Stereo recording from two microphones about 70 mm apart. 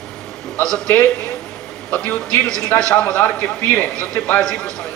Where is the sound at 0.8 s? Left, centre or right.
Left.